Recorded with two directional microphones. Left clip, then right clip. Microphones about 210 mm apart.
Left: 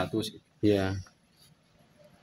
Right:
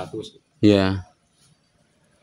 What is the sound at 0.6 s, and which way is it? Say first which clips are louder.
Speech: right 9 dB; 60° right (ahead or behind).